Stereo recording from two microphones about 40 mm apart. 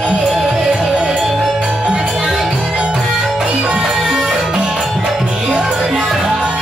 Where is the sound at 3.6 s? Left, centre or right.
Right.